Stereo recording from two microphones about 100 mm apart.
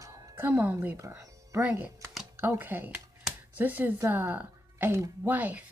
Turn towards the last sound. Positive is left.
turn(degrees=-20)  # may be behind; listen again after turning